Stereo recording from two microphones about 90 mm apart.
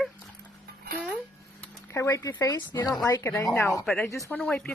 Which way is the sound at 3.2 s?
35° left (ahead or behind).